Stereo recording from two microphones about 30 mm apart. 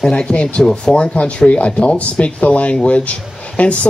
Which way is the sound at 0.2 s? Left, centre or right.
Left.